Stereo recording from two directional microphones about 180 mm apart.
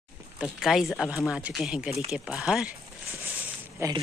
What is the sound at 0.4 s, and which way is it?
Speech, centre (ahead or behind).